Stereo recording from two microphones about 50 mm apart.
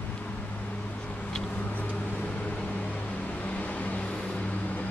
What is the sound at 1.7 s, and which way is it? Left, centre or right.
Vehicle, left.